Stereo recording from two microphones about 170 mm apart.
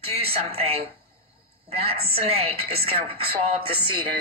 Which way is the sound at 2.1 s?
35° right (ahead or behind).